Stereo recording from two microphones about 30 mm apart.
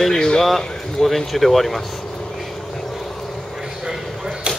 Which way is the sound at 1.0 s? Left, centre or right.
Centre.